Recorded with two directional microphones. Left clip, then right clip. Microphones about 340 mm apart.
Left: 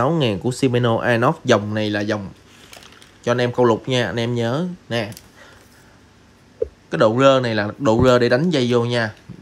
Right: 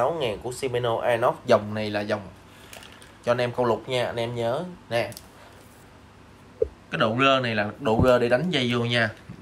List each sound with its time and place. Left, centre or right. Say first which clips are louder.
0.0 s speech: left 5 dB; left
3.3 s speech: left 6 dB; left
6.9 s speech: left 7 dB; centre